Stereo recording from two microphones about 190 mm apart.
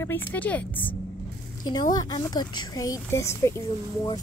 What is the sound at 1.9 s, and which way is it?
A woman's voice, 20° left (ahead or behind).